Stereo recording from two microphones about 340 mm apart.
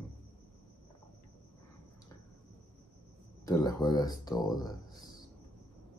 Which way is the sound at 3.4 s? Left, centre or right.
Centre.